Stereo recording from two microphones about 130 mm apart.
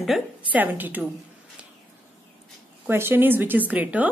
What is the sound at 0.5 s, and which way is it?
Speech, 15° right (ahead or behind).